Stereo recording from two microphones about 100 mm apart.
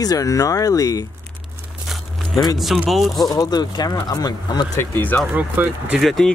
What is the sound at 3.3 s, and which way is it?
Speech, 40° left (ahead or behind).